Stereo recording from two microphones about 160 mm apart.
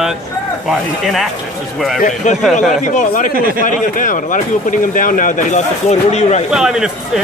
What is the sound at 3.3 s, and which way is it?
Speech, 65° right (ahead or behind).